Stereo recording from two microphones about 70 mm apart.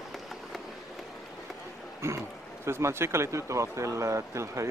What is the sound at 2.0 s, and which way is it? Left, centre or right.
Speech, right.